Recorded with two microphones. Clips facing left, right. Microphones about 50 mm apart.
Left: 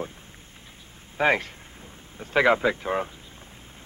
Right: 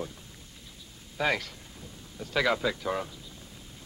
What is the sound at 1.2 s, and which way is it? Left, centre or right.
Speech, left.